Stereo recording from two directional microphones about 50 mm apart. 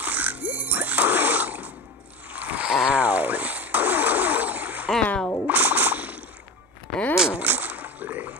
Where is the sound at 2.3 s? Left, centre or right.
Right.